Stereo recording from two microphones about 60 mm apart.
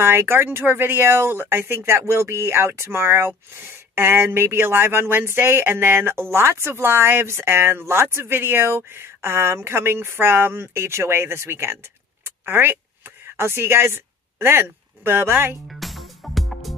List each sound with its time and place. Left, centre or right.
0.0 s speech: right
12.3 s a sound: right
15.7 s music: centre